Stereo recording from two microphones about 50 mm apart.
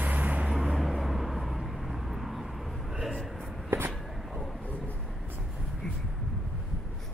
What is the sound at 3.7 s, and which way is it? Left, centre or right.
Writing, right.